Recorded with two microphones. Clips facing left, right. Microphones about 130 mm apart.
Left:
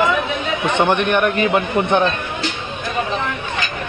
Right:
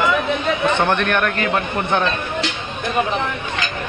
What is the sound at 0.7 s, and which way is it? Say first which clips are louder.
A man's voice: left 2 dB; 15° left (ahead or behind).